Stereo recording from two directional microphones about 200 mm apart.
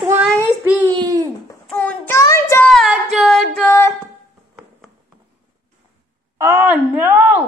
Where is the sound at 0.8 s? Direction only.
20° right (ahead or behind).